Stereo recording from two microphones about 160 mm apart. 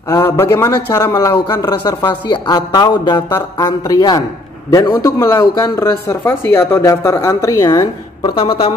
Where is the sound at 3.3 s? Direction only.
15° left (ahead or behind).